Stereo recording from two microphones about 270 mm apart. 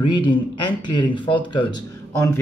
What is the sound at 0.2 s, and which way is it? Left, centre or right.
A man's voice, centre.